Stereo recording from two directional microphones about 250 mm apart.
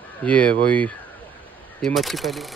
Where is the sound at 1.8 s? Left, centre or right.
Centre.